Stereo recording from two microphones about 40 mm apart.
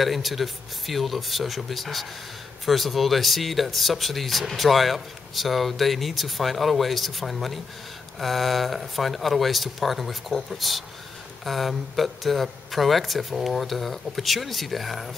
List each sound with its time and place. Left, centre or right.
0.0 s speech: centre